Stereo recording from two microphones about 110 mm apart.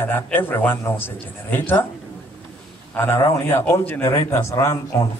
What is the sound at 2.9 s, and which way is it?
A man's voice, 20° left (ahead or behind).